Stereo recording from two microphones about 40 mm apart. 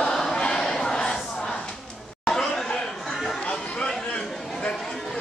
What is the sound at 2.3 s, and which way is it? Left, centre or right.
Chatter, centre.